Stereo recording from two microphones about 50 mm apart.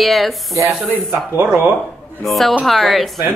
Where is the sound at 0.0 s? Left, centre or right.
Centre.